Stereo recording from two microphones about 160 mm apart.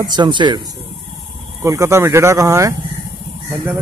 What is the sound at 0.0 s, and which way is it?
Speech, 25° right (ahead or behind).